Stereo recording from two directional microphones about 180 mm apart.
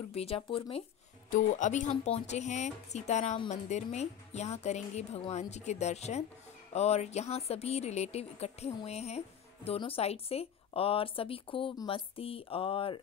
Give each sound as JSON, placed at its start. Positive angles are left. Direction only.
{"t": 0.1, "sound": "speech", "side_deg": 35}
{"t": 1.3, "sound": "speech", "side_deg": 45}